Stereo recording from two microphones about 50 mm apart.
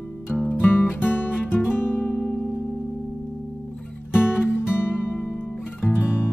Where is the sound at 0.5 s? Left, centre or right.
Left.